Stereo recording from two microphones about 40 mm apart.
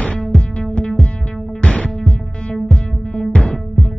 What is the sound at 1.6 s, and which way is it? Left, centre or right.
Music, left.